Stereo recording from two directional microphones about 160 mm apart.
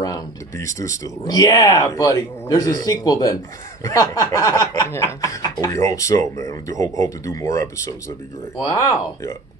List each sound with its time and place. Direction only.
0.0 s speech: 20° left (ahead or behind)